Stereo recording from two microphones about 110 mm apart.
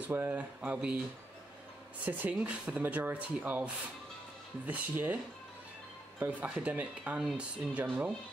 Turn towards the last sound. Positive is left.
turn(degrees=-10)  # may be behind; listen again after turning